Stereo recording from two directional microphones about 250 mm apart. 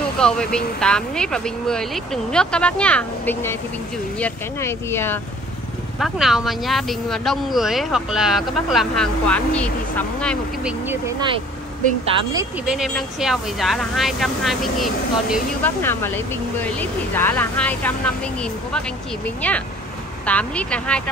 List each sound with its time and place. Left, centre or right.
0.2 s speech: centre
10.9 s speech: centre
12.6 s speech: centre